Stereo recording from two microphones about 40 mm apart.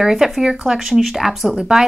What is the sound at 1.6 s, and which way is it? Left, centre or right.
Speech, centre.